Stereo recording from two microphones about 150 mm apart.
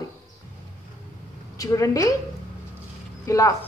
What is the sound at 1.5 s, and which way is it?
Speech, 20° left (ahead or behind).